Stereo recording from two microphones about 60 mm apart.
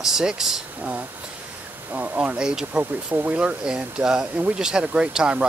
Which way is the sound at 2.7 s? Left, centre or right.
Right.